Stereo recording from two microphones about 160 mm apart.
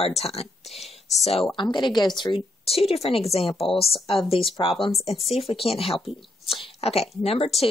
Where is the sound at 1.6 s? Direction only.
30° left (ahead or behind).